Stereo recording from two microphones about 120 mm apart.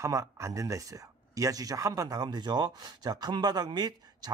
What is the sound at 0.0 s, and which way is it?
Speech, 25° right (ahead or behind).